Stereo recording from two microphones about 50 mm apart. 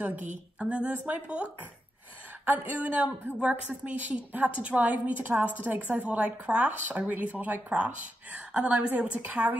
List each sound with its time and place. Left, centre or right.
0.0 s a woman's voice: right